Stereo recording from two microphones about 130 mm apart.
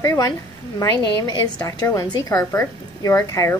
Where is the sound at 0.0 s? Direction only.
25° left (ahead or behind).